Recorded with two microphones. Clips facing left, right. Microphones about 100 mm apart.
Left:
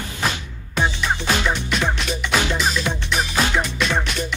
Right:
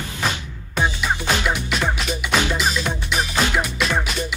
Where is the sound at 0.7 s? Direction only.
10° right (ahead or behind).